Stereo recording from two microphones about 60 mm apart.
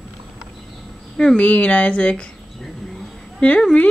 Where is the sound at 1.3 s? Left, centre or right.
Left.